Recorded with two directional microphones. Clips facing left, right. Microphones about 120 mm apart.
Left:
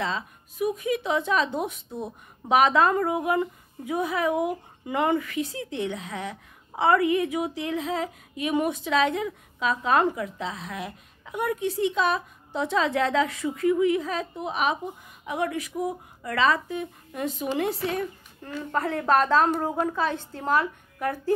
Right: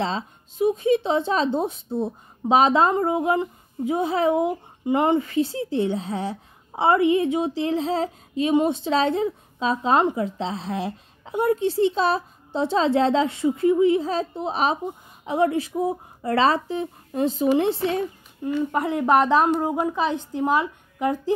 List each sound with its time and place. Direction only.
0.0 s speech: 30° right (ahead or behind)
18.4 s a woman's voice: 15° right (ahead or behind)